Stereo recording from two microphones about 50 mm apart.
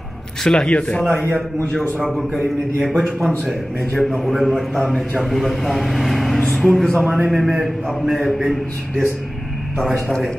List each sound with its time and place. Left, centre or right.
0.4 s a man's voice: centre
0.7 s a man's voice: left
2.1 s a man's voice: centre
3.9 s a man's voice: centre
4.2 s a man's voice: centre
6.4 s music: centre
7.2 s a man's voice: centre
9.9 s a man's voice: centre